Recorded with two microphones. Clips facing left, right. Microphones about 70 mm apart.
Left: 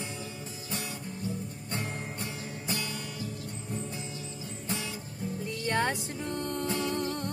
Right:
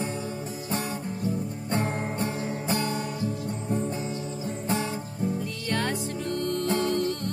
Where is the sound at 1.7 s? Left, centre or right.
Right.